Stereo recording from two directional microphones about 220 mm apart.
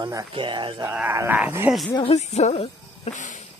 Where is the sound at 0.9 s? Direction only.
10° right (ahead or behind).